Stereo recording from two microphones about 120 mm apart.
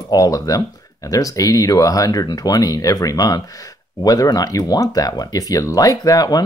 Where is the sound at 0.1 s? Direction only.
30° left (ahead or behind).